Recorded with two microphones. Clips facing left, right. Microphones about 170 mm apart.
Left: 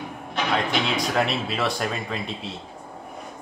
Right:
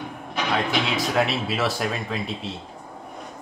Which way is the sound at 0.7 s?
Centre (ahead or behind).